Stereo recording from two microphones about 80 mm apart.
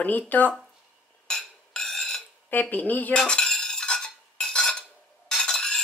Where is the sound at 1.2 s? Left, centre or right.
Centre.